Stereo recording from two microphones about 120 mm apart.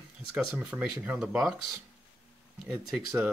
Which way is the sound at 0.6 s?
15° right (ahead or behind).